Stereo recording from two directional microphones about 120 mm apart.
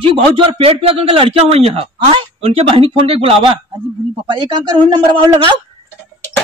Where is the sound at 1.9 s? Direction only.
40° right (ahead or behind).